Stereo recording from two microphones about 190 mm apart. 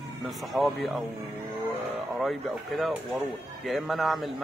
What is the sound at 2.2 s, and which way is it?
A man's voice, centre (ahead or behind).